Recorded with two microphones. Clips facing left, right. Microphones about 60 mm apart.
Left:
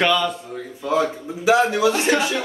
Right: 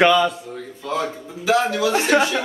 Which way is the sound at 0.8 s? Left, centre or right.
Centre.